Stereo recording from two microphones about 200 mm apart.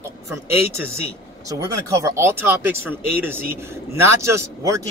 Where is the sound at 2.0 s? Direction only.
10° right (ahead or behind).